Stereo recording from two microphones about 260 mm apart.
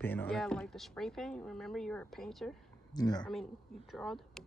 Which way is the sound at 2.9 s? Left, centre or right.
Centre.